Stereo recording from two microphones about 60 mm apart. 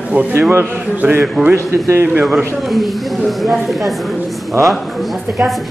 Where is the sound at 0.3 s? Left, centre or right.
Right.